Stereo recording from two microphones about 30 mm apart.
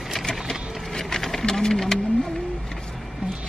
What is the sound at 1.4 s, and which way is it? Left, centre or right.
Speech, centre.